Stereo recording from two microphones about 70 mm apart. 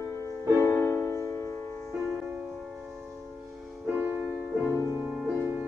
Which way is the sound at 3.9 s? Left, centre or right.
Right.